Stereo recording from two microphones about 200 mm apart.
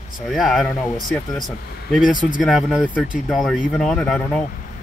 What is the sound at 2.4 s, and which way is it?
Speech, centre (ahead or behind).